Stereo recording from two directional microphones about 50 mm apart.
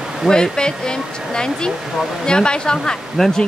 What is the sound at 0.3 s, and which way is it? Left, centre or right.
A woman's voice, centre.